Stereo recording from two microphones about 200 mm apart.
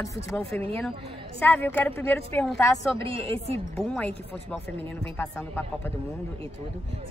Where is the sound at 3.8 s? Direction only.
5° left (ahead or behind).